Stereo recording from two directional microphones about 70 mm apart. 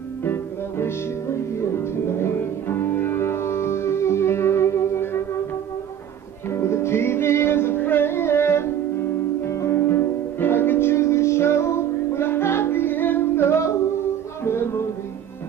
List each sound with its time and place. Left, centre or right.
0.2 s music: left
6.5 s music: left